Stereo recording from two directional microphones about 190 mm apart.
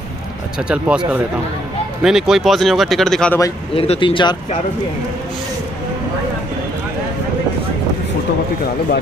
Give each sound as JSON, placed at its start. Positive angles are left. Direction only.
{"t": 0.6, "sound": "speech", "side_deg": -5}
{"t": 3.7, "sound": "speech", "side_deg": 30}